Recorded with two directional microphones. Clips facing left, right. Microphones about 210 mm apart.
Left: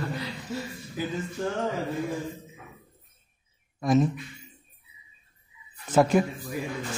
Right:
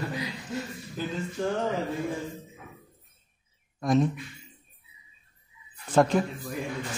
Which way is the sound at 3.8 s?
Centre (ahead or behind).